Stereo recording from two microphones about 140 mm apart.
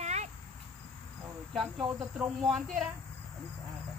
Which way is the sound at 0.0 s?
50° right (ahead or behind).